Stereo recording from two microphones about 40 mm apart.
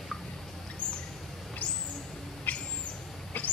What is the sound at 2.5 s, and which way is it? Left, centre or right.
Owl, left.